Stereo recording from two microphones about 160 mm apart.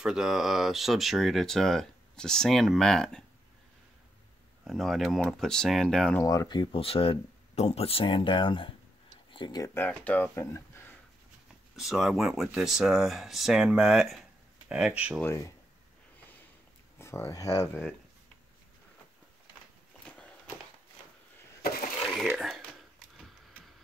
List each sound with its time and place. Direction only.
0.0 s speech: 5° right (ahead or behind)
4.6 s speech: centre (ahead or behind)
6.2 s speech: 25° left (ahead or behind)
9.8 s speech: 10° left (ahead or behind)
11.7 s speech: centre (ahead or behind)
15.2 s speech: 20° left (ahead or behind)
17.0 s speech: 15° left (ahead or behind)
22.4 s a sound: centre (ahead or behind)